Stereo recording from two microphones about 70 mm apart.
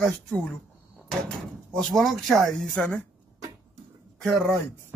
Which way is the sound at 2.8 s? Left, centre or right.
Centre.